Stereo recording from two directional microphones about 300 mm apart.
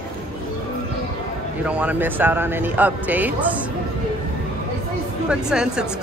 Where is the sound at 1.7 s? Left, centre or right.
Centre.